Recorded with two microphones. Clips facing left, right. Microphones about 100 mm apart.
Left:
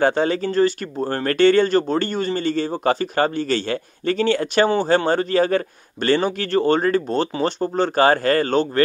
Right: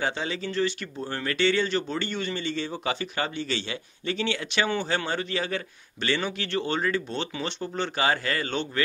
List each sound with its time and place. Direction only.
0.0 s speech: 50° left (ahead or behind)